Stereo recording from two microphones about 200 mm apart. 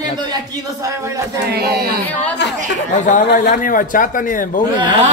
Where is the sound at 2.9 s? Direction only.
40° left (ahead or behind).